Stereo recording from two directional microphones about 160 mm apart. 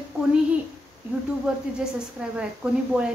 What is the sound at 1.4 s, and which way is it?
A woman's voice, 5° right (ahead or behind).